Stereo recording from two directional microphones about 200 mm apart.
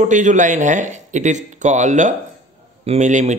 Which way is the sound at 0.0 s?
40° right (ahead or behind).